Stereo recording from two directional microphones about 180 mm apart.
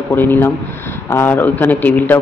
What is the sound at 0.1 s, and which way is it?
A man's voice, 10° left (ahead or behind).